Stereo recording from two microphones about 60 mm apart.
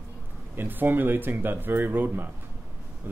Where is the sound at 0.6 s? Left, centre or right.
Right.